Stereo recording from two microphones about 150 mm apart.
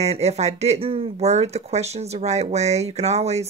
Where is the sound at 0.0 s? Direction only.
45° right (ahead or behind).